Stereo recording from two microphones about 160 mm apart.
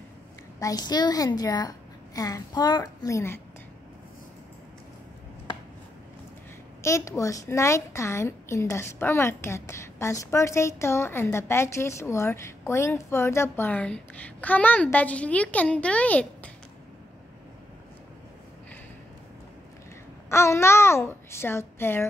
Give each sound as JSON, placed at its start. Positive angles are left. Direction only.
{"t": 0.6, "sound": "a woman's voice", "side_deg": 25}
{"t": 6.8, "sound": "a woman's voice", "side_deg": 20}
{"t": 20.2, "sound": "a woman's voice", "side_deg": 15}